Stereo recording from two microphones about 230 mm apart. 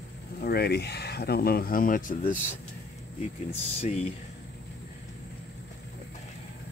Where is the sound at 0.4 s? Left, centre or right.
Left.